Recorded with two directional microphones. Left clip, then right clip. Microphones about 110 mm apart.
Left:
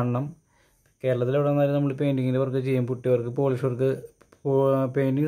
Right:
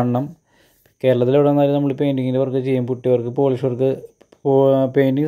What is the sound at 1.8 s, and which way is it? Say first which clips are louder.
Speech: right 6 dB; 25° right (ahead or behind).